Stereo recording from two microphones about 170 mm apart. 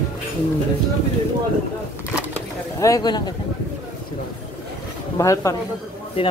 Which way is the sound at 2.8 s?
20° left (ahead or behind).